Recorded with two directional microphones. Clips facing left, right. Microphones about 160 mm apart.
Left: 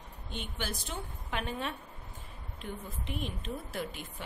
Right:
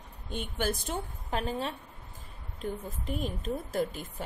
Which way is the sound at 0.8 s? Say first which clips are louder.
Right 5 dB; 35° right (ahead or behind).